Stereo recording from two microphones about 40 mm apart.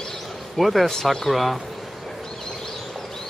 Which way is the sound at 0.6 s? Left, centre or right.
Centre.